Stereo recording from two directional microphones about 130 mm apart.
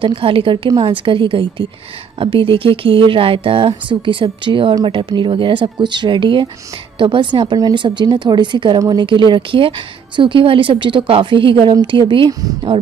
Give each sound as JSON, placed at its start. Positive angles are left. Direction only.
{"t": 0.0, "sound": "a woman's voice", "side_deg": -45}